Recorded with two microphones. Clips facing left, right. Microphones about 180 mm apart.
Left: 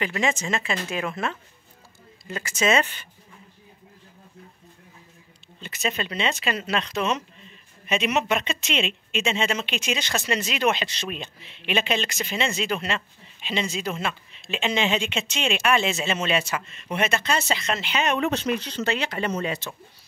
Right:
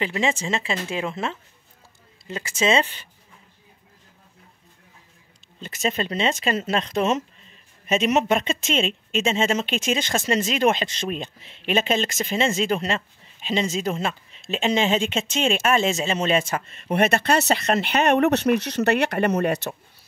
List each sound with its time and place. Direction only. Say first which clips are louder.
0.0 s speech: right 1 dB; 25° right (ahead or behind)
5.6 s speech: right 3 dB; 45° right (ahead or behind); by 19.7 s 65° right (ahead or behind)